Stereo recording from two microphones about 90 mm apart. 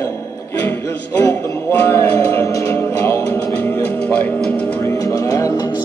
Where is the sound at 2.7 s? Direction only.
25° left (ahead or behind).